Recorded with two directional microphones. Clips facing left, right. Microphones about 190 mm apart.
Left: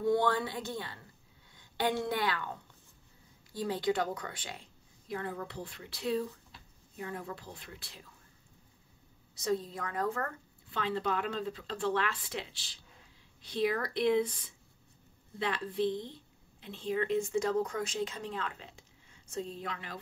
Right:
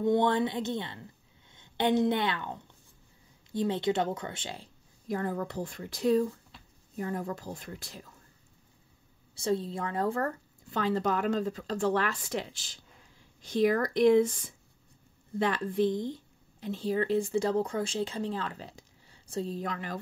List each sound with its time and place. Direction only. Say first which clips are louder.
0.0 s a woman's voice: right 3 dB; 20° right (ahead or behind)
5.0 s a woman's voice: right 6 dB; 40° right (ahead or behind)
9.3 s a woman's voice: right 3 dB; 30° right (ahead or behind)